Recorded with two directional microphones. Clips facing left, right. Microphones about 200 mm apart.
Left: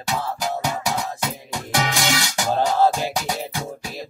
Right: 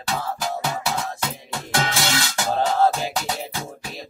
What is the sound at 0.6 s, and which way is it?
Music, 15° left (ahead or behind).